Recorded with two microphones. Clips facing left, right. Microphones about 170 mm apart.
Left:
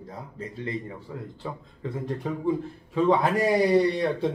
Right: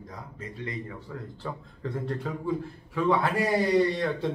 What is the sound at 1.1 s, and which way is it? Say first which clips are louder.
Speech: left 3 dB; 15° left (ahead or behind).